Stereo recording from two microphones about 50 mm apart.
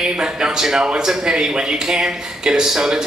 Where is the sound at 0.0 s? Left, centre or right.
Centre.